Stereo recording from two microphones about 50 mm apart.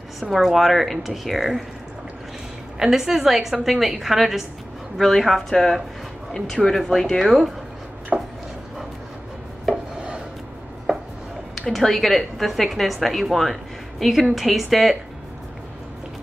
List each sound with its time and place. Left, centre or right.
0.2 s a woman's voice: centre
2.8 s a woman's voice: centre
8.1 s chopping: centre
11.7 s a woman's voice: centre